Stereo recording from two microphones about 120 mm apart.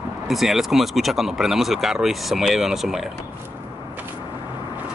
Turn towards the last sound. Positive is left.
turn(degrees=0)  # may be behind; listen again after turning